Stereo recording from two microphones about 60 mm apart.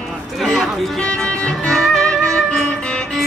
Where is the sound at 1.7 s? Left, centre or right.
Centre.